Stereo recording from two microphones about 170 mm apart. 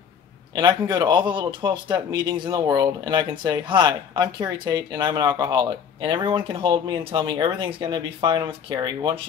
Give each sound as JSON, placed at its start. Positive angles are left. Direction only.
{"t": 0.6, "sound": "a man's voice", "side_deg": -25}